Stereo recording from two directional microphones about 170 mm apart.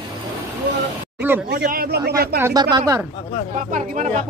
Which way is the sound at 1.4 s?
65° right (ahead or behind).